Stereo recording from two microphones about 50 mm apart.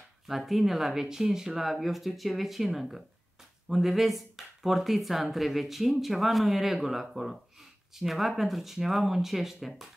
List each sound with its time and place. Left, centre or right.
0.3 s speech: centre